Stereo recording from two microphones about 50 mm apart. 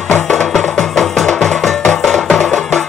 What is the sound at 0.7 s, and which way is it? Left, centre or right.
Music, centre.